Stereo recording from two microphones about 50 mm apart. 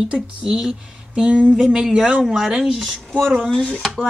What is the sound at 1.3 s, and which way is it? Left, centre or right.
Speech, right.